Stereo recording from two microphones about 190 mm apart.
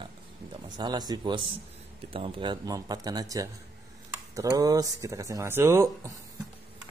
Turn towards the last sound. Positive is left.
turn(degrees=-15)  # may be behind; listen again after turning